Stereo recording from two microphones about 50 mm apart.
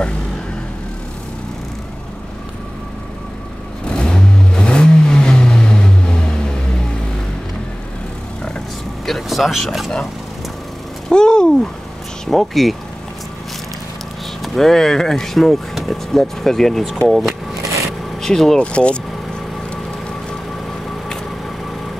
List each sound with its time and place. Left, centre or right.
3.8 s vehicle: centre
9.0 s vehicle: centre
11.1 s a sound: centre
12.3 s speech: centre
14.4 s speech: centre
18.6 s speech: left